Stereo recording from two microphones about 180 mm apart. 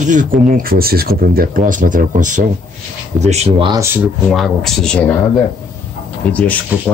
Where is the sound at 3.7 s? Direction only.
15° right (ahead or behind).